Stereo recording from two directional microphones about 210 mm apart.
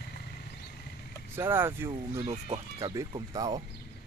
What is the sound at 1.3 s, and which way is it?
Speech, 10° right (ahead or behind).